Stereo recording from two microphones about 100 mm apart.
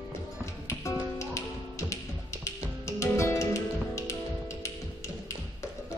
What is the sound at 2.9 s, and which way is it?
Music, 30° left (ahead or behind).